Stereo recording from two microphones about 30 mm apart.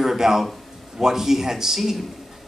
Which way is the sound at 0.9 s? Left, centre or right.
Centre.